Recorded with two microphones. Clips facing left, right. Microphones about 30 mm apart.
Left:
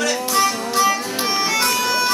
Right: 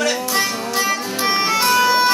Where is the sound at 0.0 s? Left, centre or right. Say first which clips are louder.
Left 1 dB; centre.